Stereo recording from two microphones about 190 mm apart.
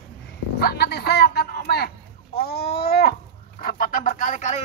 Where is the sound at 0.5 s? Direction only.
55° left (ahead or behind).